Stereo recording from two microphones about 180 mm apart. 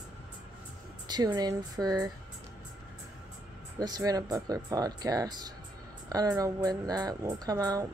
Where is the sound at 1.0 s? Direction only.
20° right (ahead or behind).